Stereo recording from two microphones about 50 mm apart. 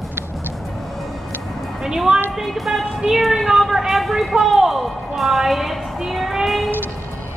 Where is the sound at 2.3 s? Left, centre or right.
Centre.